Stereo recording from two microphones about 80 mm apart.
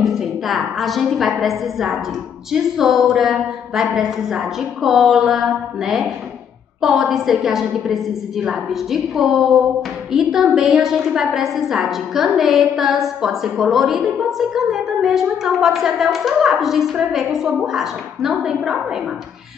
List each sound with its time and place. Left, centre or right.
0.0 s a woman's voice: centre